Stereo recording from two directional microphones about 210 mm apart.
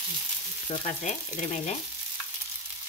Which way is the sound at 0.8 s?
35° left (ahead or behind).